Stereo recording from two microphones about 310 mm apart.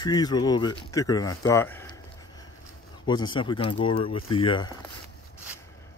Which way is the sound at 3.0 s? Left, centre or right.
Centre.